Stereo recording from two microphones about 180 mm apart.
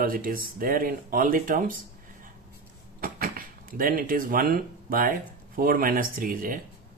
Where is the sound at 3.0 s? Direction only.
55° right (ahead or behind).